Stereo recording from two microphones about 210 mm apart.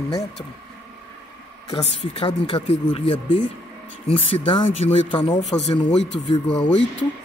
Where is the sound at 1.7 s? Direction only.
25° left (ahead or behind).